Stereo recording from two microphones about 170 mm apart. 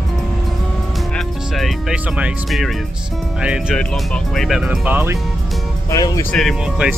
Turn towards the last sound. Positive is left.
turn(degrees=0)  # may be behind; listen again after turning